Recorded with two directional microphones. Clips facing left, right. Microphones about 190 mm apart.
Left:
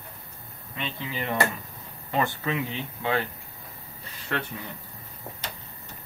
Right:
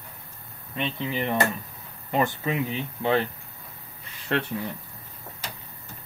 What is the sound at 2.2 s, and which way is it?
Speech, 20° right (ahead or behind).